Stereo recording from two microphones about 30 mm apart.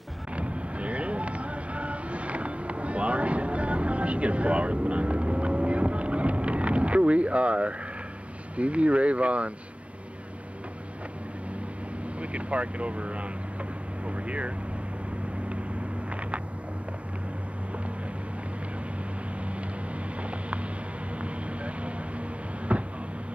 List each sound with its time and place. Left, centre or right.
0.4 s train: right
8.5 s speech: right
12.2 s speech: right
14.0 s vehicle: right
20.2 s a sound: right
21.2 s vehicle: right
22.7 s a sound: right